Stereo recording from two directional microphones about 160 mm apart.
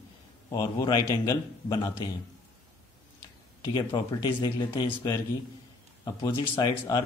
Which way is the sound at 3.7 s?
25° left (ahead or behind).